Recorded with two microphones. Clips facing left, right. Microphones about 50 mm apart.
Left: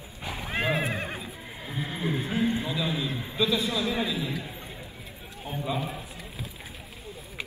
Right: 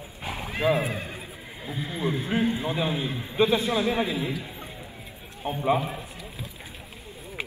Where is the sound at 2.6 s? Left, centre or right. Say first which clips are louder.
Right 2 dB; right.